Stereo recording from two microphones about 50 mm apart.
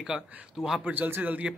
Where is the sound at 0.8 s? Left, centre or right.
Right.